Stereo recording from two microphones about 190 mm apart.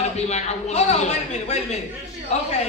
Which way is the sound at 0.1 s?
35° left (ahead or behind).